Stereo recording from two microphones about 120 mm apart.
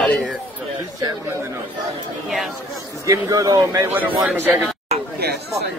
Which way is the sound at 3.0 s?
30° right (ahead or behind).